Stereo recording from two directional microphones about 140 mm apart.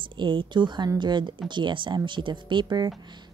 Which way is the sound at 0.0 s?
35° right (ahead or behind).